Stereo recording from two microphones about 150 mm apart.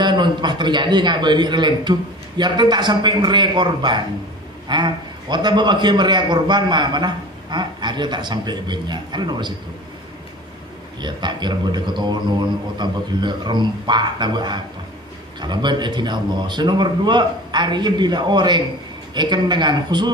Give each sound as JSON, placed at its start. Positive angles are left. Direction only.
{"t": 0.0, "sound": "a man's voice", "side_deg": -30}
{"t": 11.0, "sound": "a man's voice", "side_deg": -30}